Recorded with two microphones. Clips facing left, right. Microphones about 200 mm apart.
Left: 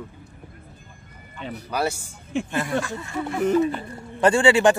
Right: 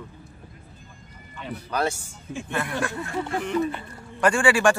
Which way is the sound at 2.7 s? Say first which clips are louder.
Left 1 dB; 60° right (ahead or behind).